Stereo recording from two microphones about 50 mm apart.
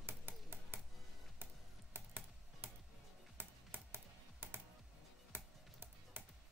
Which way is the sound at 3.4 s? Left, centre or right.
Right.